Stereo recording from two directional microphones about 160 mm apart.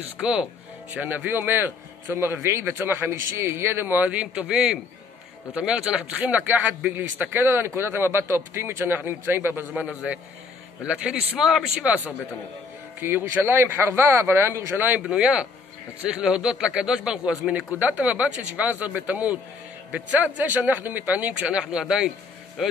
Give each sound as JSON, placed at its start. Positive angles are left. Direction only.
{"t": 0.9, "sound": "a man's voice", "side_deg": -10}